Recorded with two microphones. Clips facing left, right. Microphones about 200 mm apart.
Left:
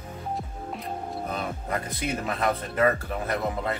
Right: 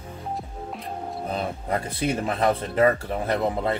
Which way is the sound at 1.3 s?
30° right (ahead or behind).